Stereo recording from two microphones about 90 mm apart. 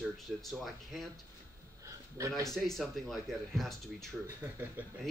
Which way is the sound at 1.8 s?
35° right (ahead or behind).